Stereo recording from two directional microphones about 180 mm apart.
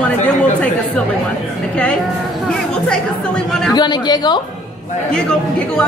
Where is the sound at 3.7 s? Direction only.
25° left (ahead or behind).